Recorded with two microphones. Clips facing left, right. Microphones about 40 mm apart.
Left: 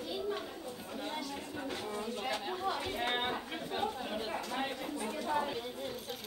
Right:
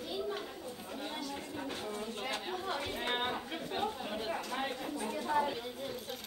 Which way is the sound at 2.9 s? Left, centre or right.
Centre.